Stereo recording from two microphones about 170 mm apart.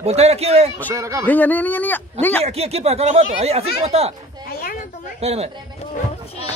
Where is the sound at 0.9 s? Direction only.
20° right (ahead or behind).